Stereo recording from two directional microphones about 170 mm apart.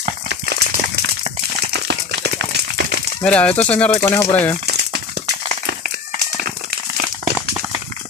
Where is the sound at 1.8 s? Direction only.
85° right.